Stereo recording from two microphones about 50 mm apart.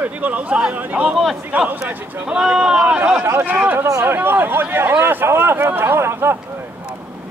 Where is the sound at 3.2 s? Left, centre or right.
Right.